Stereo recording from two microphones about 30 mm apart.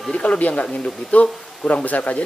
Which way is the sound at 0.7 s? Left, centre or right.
Left.